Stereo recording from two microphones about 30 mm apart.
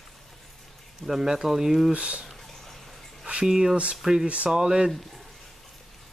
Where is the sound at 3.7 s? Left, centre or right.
Right.